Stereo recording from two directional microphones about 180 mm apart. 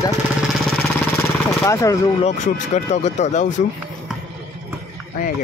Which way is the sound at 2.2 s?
40° left (ahead or behind).